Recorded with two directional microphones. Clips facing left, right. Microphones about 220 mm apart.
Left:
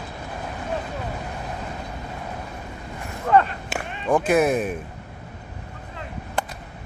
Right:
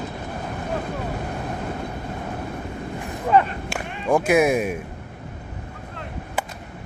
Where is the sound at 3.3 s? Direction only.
15° right (ahead or behind).